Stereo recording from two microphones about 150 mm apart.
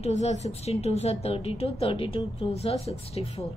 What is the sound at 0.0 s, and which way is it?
A woman's voice, 45° left (ahead or behind).